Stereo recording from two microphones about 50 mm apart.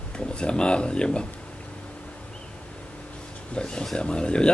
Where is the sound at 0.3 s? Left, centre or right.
Centre.